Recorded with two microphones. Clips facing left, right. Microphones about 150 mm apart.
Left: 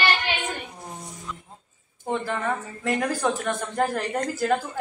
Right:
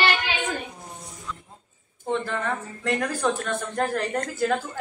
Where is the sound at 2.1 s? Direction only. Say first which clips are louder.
Even; 10° left (ahead or behind).